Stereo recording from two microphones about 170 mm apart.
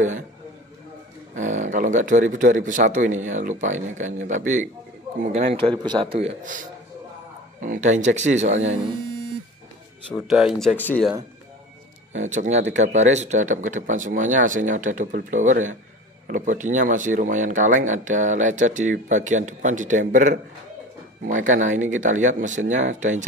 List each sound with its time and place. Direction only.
1.3 s speech: 45° right (ahead or behind)
5.6 s a man's voice: 25° right (ahead or behind); by 8.5 s 45° right (ahead or behind)
10.3 s speech: centre (ahead or behind)
10.8 s speech: 10° left (ahead or behind)
12.1 s speech: 45° right (ahead or behind)